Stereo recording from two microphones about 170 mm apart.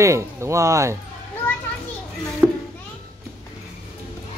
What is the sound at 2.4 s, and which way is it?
Children playing, 10° right (ahead or behind).